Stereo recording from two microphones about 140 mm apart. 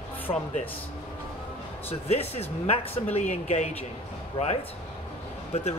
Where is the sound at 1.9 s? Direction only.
45° left (ahead or behind).